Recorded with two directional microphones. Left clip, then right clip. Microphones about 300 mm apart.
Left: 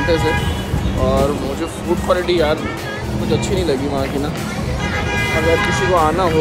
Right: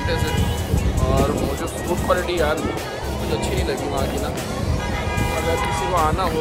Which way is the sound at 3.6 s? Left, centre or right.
Centre.